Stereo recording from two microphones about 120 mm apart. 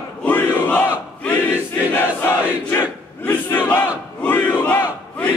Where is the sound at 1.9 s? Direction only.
15° left (ahead or behind).